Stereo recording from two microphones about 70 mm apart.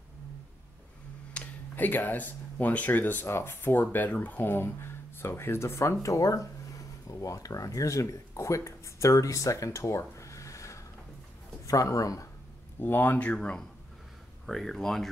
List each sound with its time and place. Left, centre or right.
1.3 s speech: left
6.0 s speech: left
12.7 s speech: left
14.4 s speech: centre